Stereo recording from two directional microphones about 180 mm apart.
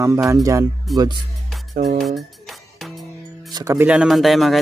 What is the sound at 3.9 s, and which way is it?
Speech, 5° right (ahead or behind).